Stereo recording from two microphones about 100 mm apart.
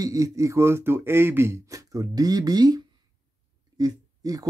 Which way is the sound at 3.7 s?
35° right (ahead or behind).